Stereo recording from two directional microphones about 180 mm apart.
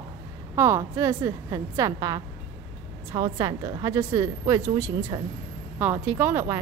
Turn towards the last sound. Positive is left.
turn(degrees=-15)  # may be behind; listen again after turning